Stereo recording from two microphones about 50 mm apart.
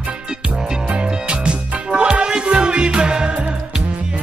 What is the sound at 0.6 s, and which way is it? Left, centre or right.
Music, centre.